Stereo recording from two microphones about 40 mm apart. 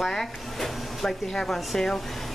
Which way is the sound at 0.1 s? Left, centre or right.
Centre.